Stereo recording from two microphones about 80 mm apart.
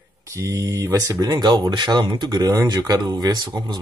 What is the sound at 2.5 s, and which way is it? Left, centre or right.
Speech, right.